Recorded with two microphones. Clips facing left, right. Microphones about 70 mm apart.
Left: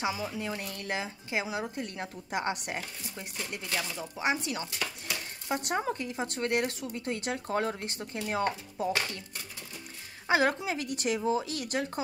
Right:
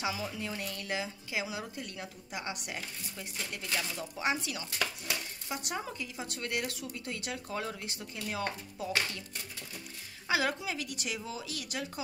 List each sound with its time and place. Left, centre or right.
0.0 s speech: left
3.3 s speech: centre
5.5 s speech: left
10.2 s speech: left